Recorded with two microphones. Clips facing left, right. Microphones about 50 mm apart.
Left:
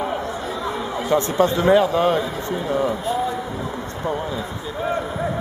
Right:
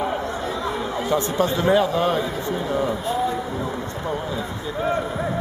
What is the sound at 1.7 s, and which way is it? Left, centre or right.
Speech, left.